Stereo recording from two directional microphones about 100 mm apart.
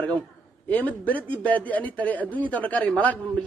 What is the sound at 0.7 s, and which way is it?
A man's voice, 15° left (ahead or behind).